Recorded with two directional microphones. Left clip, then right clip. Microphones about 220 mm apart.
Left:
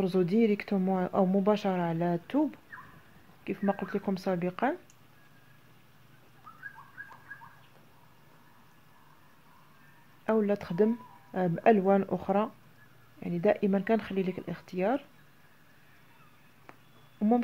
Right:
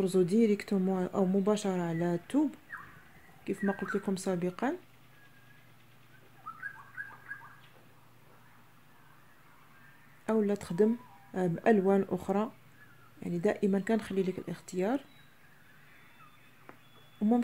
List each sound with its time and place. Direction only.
0.0 s speech: 10° left (ahead or behind)
2.7 s a sound: 45° right (ahead or behind)
3.4 s speech: 5° left (ahead or behind)
7.0 s bird: 45° right (ahead or behind)
10.2 s speech: 5° left (ahead or behind)